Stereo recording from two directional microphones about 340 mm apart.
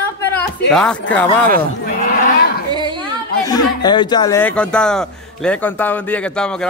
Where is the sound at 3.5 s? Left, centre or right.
Centre.